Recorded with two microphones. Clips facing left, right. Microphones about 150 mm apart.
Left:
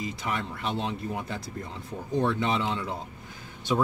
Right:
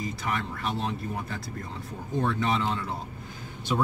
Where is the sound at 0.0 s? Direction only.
20° left (ahead or behind).